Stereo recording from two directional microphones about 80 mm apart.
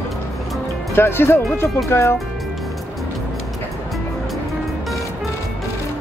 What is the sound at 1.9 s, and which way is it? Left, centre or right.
Music, left.